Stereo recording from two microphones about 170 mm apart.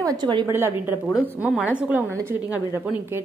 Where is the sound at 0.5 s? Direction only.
10° right (ahead or behind).